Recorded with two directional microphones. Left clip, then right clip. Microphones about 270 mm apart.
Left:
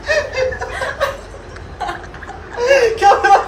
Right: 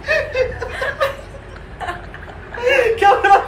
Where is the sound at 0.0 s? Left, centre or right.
Left.